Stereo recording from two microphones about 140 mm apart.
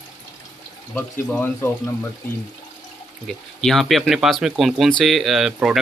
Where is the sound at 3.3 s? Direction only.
Centre (ahead or behind).